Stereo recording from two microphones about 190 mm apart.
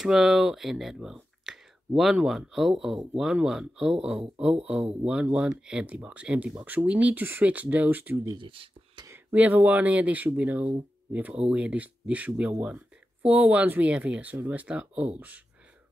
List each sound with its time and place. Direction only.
0.0 s speech: centre (ahead or behind)
8.4 s a sound: 25° right (ahead or behind)
9.1 s speech: 10° right (ahead or behind)